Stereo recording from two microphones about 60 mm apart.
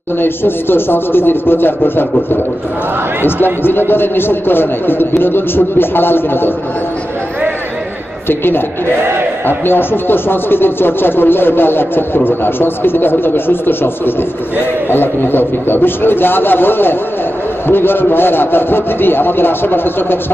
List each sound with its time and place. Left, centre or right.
0.2 s speech: left
3.6 s speech: left
8.3 s speech: left